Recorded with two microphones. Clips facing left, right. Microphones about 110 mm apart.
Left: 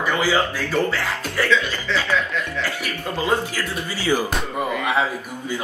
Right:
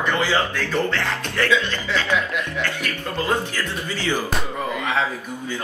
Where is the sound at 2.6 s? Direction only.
10° left (ahead or behind).